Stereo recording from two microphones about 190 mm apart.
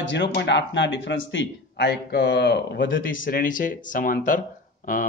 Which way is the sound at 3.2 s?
45° left (ahead or behind).